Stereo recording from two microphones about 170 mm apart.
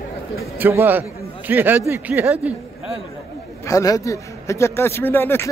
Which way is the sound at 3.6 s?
20° left (ahead or behind).